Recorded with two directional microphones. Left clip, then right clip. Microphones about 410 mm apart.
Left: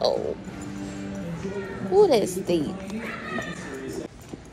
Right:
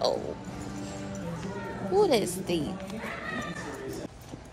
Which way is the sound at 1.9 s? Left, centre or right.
Centre.